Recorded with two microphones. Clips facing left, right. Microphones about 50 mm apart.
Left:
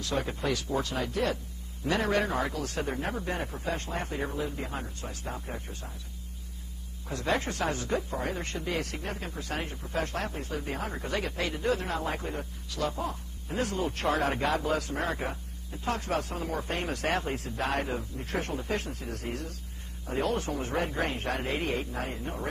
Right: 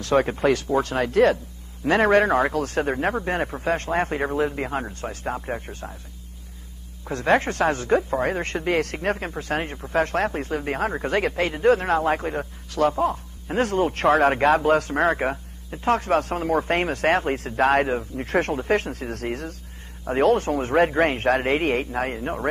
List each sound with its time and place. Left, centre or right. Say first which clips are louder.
0.0 s speech: right 11 dB; right
1.9 s speech: right 10 dB; right
7.1 s speech: right 9 dB; right